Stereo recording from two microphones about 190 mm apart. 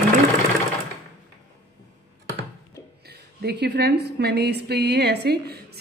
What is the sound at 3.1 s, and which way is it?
A woman's voice, 60° right (ahead or behind).